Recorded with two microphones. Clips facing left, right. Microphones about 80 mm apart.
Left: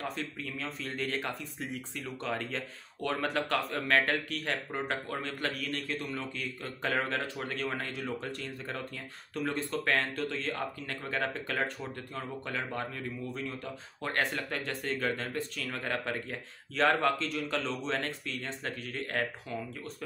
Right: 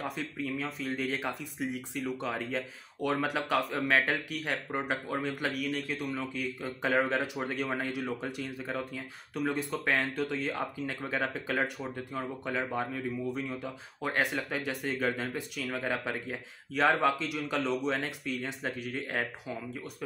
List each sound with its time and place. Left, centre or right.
0.0 s speech: centre